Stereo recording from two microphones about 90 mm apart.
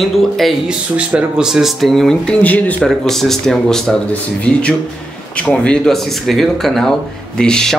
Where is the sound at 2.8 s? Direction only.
5° left (ahead or behind).